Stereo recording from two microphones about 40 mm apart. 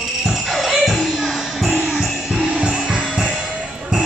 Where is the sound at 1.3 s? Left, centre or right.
Centre.